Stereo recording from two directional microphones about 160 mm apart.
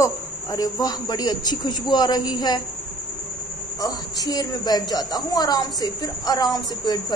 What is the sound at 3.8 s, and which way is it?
A woman's voice, 25° left (ahead or behind).